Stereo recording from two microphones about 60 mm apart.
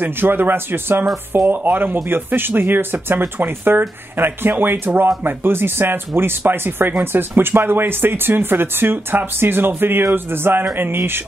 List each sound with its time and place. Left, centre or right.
0.0 s speech: right